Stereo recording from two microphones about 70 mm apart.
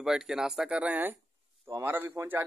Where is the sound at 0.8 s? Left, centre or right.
Right.